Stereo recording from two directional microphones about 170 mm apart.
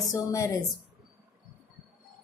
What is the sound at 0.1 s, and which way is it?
Speech, 20° left (ahead or behind).